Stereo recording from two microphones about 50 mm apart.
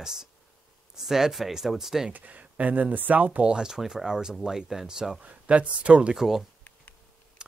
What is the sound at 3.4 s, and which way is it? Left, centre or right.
Speech, centre.